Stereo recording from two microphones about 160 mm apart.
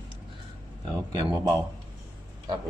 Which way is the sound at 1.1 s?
25° right (ahead or behind).